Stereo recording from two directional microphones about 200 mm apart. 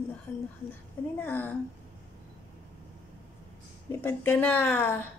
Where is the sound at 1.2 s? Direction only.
10° left (ahead or behind).